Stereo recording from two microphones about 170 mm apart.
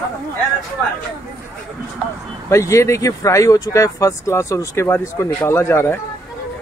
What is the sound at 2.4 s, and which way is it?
Speech, 15° left (ahead or behind).